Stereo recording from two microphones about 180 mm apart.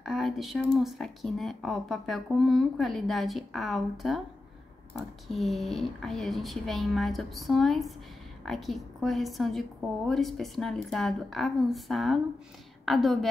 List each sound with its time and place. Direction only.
0.0 s speech: centre (ahead or behind)